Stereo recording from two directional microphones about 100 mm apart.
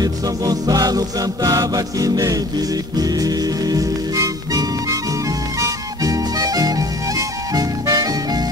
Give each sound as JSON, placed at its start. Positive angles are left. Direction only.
{"t": 0.0, "sound": "music", "side_deg": -40}